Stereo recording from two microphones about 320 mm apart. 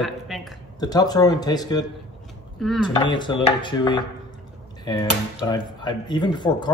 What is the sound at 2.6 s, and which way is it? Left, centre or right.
Speech, centre.